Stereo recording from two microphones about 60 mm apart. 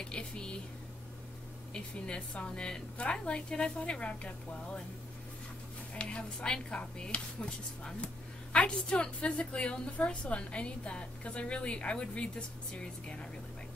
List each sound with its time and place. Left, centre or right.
0.0 s typing: centre
1.7 s a woman's voice: centre
5.9 s a woman's voice: centre